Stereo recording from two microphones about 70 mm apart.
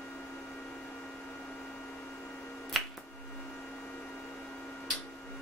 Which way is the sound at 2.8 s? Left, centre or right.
Centre.